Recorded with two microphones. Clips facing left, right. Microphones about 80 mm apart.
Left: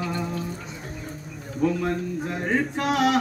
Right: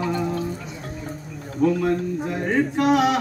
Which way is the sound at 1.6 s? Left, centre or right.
Centre.